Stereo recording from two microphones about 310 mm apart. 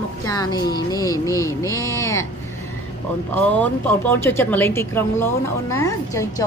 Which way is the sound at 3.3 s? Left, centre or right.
Centre.